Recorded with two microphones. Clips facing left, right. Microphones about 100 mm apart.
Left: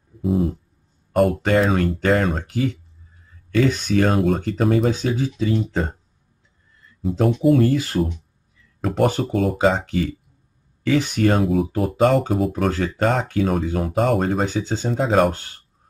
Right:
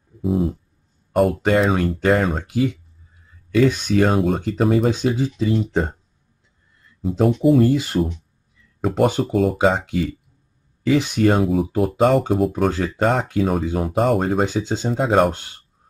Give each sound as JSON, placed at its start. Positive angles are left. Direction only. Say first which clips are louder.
{"t": 0.2, "sound": "a sound", "louder": "even", "side_deg": 0}
{"t": 1.1, "sound": "speech", "louder": "even", "side_deg": 0}
{"t": 3.8, "sound": "speech", "louder": "right 1 dB", "side_deg": -5}
{"t": 7.0, "sound": "speech", "louder": "right 2 dB", "side_deg": -5}
{"t": 11.1, "sound": "speech", "louder": "right 1 dB", "side_deg": -5}
{"t": 12.7, "sound": "speech", "louder": "even", "side_deg": -15}
{"t": 13.0, "sound": "speech", "louder": "right 1 dB", "side_deg": -5}
{"t": 14.4, "sound": "speech", "louder": "right 2 dB", "side_deg": -15}
{"t": 14.9, "sound": "speech", "louder": "right 1 dB", "side_deg": -5}